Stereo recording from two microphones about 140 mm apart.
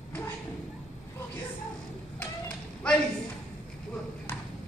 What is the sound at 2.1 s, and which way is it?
Children playing, 10° left (ahead or behind).